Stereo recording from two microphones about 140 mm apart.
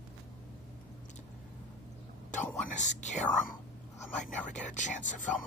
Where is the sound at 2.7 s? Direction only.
60° left (ahead or behind).